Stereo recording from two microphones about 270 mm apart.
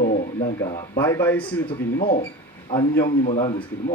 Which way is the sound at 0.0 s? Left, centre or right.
Left.